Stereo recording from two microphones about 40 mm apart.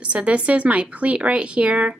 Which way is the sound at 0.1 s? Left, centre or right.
Right.